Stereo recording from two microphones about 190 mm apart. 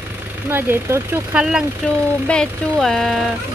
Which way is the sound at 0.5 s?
10° right (ahead or behind).